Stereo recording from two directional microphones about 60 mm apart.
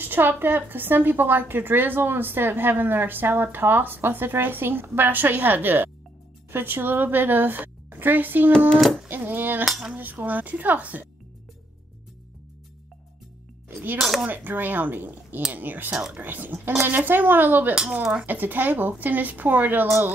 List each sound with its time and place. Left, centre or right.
0.0 s a woman's voice: right
8.5 s a child's voice: centre
9.1 s a woman's voice: right
9.7 s speech: centre
9.9 s a woman's voice: right
13.9 s speech: centre
14.2 s a woman's voice: right